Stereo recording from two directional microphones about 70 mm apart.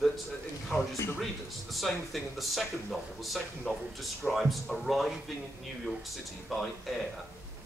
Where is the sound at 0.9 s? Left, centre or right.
Left.